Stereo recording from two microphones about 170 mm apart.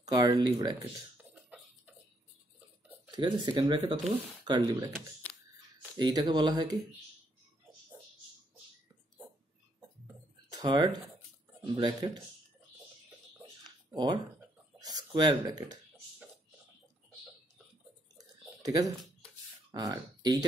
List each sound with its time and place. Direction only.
0.0 s speech: 25° right (ahead or behind)
1.1 s beatboxing: 10° right (ahead or behind)
3.2 s speech: 25° right (ahead or behind)
5.9 s speech: 25° right (ahead or behind)
9.8 s a sound: 15° right (ahead or behind)
10.6 s speech: 25° right (ahead or behind)
13.7 s a sound: 25° right (ahead or behind)
15.0 s speech: 20° right (ahead or behind)
18.1 s a sound: 20° right (ahead or behind)
19.7 s speech: 20° right (ahead or behind)